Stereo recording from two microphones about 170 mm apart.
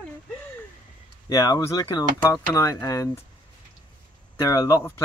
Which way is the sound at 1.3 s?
20° left (ahead or behind).